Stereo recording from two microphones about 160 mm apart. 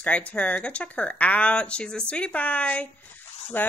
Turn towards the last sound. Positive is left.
turn(degrees=10)  # may be behind; listen again after turning